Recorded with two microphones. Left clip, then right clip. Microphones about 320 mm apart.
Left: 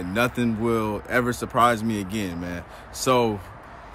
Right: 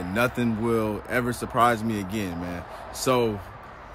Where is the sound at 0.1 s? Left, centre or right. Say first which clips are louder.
Left 1 dB; centre.